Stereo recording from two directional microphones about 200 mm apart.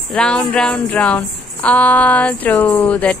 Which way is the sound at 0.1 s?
5° left (ahead or behind).